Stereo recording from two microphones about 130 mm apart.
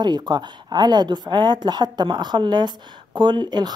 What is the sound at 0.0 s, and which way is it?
Speech, 30° right (ahead or behind).